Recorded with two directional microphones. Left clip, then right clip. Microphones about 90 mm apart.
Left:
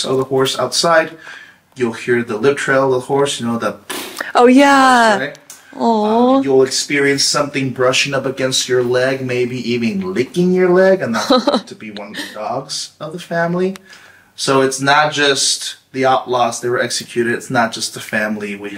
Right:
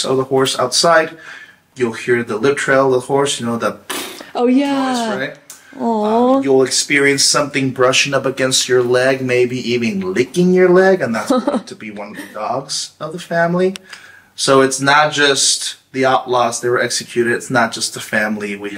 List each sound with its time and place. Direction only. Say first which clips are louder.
0.0 s speech: even; centre (ahead or behind)
4.4 s speech: left 7 dB; 35° left (ahead or behind)
5.8 s speech: left 1 dB; 5° left (ahead or behind)
11.1 s speech: left 3 dB; 10° left (ahead or behind)
12.4 s speech: right 2 dB; centre (ahead or behind)